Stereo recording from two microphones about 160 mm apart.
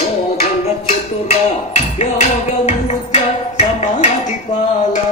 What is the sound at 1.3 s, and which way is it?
Music, 45° left (ahead or behind).